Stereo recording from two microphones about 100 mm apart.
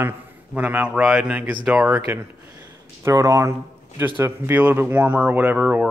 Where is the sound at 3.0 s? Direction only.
30° right (ahead or behind).